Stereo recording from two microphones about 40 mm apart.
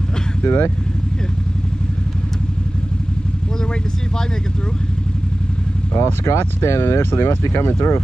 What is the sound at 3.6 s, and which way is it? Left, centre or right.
Speech, centre.